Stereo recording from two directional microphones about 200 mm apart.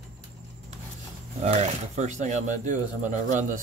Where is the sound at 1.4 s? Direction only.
35° right (ahead or behind).